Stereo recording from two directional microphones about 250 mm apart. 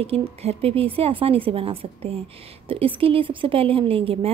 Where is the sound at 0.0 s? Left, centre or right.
Right.